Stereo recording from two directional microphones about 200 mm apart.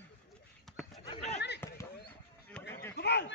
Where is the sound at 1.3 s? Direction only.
60° left (ahead or behind).